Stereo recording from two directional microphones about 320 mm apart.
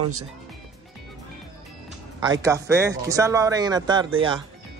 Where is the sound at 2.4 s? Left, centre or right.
Centre.